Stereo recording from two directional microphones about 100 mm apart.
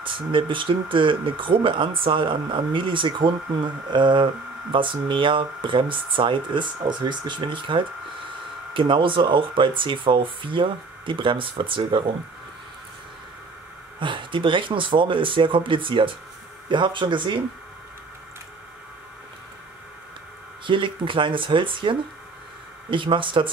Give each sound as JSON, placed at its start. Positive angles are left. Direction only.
{"t": 0.0, "sound": "speech", "side_deg": -60}
{"t": 13.9, "sound": "speech", "side_deg": -55}
{"t": 20.6, "sound": "speech", "side_deg": -55}